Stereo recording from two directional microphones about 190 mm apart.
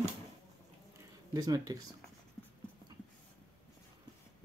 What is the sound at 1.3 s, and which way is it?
Speech, 20° right (ahead or behind).